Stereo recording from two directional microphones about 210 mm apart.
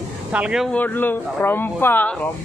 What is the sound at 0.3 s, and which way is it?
Speech, 5° right (ahead or behind).